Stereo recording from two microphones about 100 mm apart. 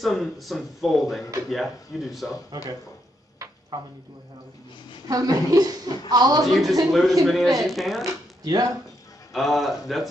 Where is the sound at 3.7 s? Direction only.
45° right (ahead or behind).